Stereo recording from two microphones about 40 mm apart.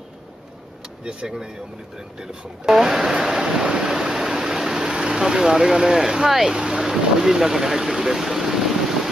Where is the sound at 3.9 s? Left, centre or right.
Centre.